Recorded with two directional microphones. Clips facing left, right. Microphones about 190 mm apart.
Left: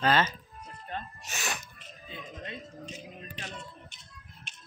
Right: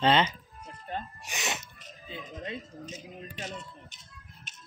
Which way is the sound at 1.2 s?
20° right (ahead or behind).